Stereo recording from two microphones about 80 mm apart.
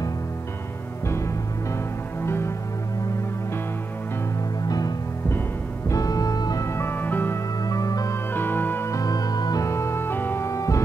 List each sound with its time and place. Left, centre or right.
1.0 s music: left
4.6 s music: left
6.6 s music: left
7.6 s music: left
8.3 s music: left
8.9 s music: left
9.7 s music: left